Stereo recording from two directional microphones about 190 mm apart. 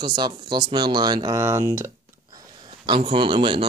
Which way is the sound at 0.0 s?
25° right (ahead or behind).